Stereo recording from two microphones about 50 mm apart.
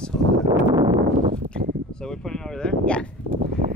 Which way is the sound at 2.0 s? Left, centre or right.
Centre.